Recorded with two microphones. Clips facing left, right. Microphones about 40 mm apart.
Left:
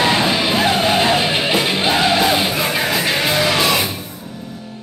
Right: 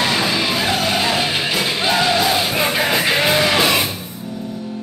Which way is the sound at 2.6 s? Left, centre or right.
Centre.